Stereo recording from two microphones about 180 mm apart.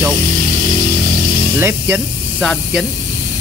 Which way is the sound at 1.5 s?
10° right (ahead or behind).